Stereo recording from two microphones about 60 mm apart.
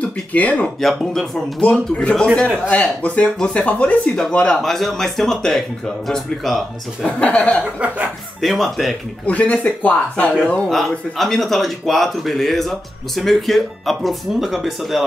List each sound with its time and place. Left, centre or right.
0.0 s speech: left
0.7 s speech: centre
1.6 s speech: centre
4.6 s speech: centre
7.1 s speech: left
8.4 s speech: centre
9.2 s speech: left
10.7 s speech: centre